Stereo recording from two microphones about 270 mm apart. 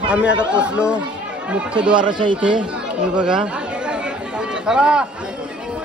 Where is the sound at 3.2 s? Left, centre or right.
Centre.